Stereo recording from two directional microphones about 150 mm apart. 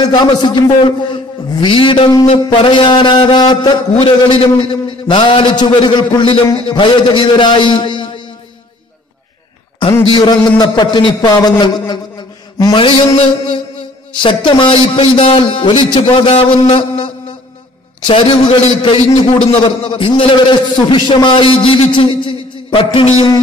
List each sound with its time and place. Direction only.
0.0 s a man's voice: 25° left (ahead or behind)
10.0 s a man's voice: 30° left (ahead or behind)